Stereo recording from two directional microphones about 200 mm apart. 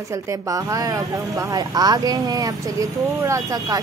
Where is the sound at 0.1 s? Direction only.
15° right (ahead or behind).